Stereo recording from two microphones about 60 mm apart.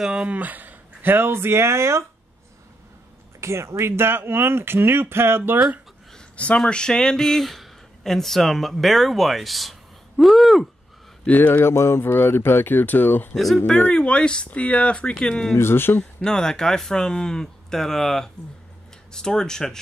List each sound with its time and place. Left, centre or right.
0.0 s speech: centre; by 2.0 s right
3.3 s speech: right
6.1 s speech: left; by 10.7 s centre
11.2 s speech: left
13.3 s speech: centre
13.9 s speech: centre
15.5 s speech: left
16.0 s speech: centre